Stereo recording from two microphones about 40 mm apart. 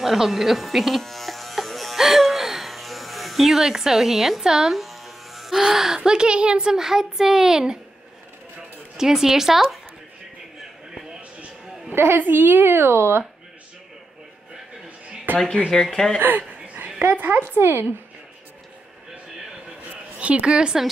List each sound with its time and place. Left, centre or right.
0.0 s electric shaver: centre
2.0 s music: centre
5.9 s speech: right
8.9 s speech: centre
11.9 s a woman's voice: right
15.3 s speech: centre
16.2 s a woman's voice: right
20.2 s speech: right